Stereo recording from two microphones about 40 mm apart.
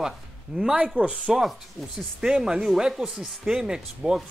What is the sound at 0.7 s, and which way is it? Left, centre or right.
Speech, right.